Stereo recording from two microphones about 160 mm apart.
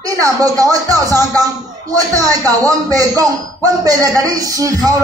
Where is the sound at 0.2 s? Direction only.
20° right (ahead or behind).